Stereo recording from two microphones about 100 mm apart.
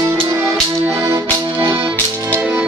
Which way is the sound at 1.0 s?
30° right (ahead or behind).